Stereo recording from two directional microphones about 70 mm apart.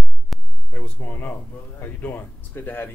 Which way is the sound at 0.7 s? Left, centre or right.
Left.